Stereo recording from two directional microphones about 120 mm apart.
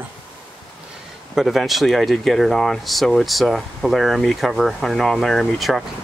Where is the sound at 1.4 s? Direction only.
Centre (ahead or behind).